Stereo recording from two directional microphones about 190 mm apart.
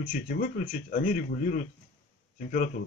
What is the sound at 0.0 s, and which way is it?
A man's voice, 45° left (ahead or behind).